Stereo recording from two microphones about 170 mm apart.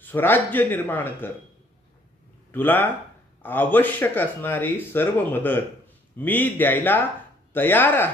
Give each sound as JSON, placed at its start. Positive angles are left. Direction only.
{"t": 0.0, "sound": "speech", "side_deg": 10}
{"t": 2.5, "sound": "speech", "side_deg": 10}